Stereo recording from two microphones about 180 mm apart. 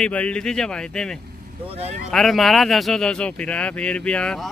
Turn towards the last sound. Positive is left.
turn(degrees=5)  # may be behind; listen again after turning